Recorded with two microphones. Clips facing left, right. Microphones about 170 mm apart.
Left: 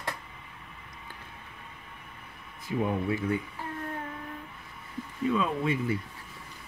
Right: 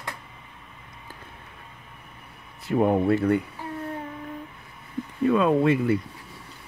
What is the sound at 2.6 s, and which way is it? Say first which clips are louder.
Speech: right 8 dB; 65° right (ahead or behind).